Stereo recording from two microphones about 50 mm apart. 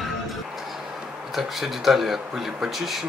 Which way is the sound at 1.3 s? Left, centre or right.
Centre.